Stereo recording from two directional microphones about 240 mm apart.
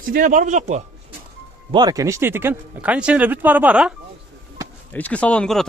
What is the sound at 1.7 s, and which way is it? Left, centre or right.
Speech, centre.